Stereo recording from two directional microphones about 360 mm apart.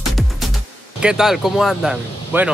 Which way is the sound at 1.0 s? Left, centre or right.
Centre.